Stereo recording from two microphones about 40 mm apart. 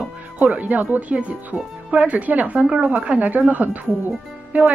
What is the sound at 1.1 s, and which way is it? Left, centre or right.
A woman's voice, right.